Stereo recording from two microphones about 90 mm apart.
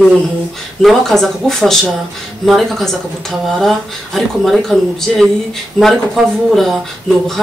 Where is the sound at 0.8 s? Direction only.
5° left (ahead or behind).